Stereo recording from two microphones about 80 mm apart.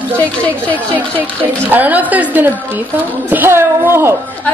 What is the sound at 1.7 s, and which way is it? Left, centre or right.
Speech, right.